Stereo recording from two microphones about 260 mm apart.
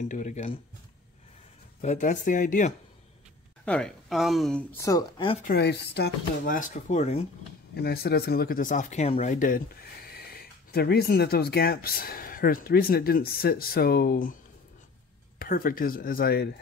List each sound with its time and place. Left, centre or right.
0.0 s speech: left
1.8 s speech: left
3.6 s speech: centre
5.4 s speech: left
7.7 s speech: left